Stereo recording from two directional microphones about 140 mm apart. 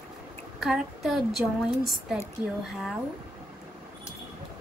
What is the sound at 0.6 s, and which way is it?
Speech, 5° right (ahead or behind).